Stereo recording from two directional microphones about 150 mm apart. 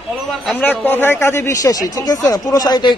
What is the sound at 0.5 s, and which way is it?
A man's voice, 10° left (ahead or behind).